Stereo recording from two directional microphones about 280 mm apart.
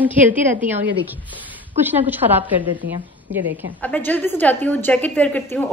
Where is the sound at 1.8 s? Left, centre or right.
Centre.